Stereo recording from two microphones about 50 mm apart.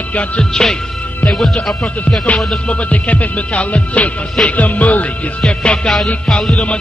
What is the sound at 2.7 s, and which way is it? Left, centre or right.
Music, left.